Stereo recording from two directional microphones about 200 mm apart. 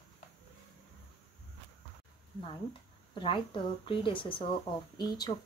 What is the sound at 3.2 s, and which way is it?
Speech, 25° left (ahead or behind).